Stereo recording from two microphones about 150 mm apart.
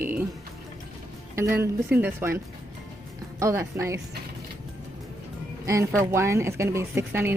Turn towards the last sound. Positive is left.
turn(degrees=-15)  # may be behind; listen again after turning